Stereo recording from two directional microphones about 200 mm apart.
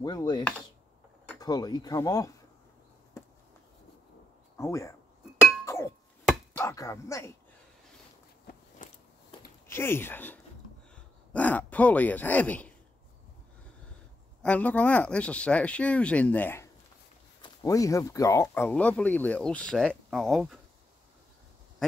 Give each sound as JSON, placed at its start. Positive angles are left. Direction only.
{"t": 0.0, "sound": "speech", "side_deg": 20}
{"t": 0.4, "sound": "chopping", "side_deg": 5}
{"t": 1.4, "sound": "speech", "side_deg": 20}
{"t": 4.6, "sound": "speech", "side_deg": 15}
{"t": 6.2, "sound": "chopping", "side_deg": 10}
{"t": 8.8, "sound": "a sound", "side_deg": 40}
{"t": 9.7, "sound": "speech", "side_deg": 10}
{"t": 14.4, "sound": "speech", "side_deg": 5}